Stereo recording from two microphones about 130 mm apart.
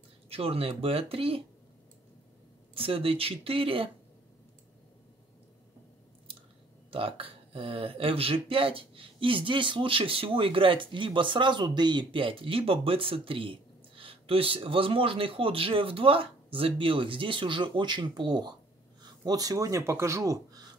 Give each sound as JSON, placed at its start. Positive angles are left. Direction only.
{"t": 0.3, "sound": "speech", "side_deg": -45}
{"t": 2.7, "sound": "speech", "side_deg": -45}
{"t": 6.9, "sound": "speech", "side_deg": -45}